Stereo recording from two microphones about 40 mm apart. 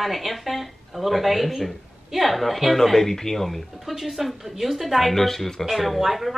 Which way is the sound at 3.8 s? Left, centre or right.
Centre.